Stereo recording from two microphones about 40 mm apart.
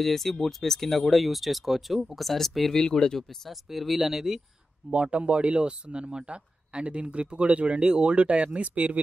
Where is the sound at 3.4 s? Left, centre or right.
Centre.